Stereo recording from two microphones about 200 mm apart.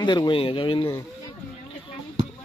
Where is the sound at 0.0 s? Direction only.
25° left (ahead or behind).